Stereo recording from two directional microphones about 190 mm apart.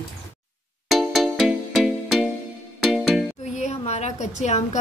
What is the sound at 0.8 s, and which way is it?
Music, centre (ahead or behind).